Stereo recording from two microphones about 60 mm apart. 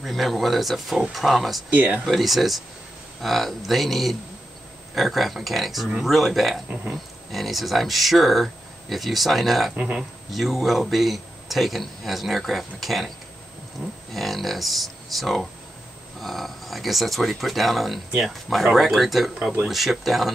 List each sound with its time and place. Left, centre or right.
0.0 s speech: centre
1.7 s speech: right
2.0 s speech: centre